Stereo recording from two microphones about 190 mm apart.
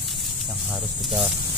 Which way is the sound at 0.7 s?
5° right (ahead or behind).